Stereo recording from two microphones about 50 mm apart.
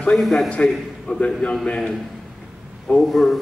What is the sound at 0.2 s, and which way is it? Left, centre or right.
Speech, centre.